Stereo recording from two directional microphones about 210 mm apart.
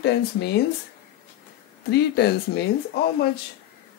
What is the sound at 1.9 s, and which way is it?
Speech, 50° left (ahead or behind).